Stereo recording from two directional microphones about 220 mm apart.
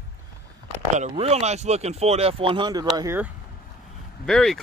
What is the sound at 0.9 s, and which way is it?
Speech, 30° right (ahead or behind).